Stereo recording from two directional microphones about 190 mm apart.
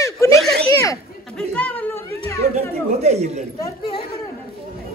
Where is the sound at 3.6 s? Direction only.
30° left (ahead or behind).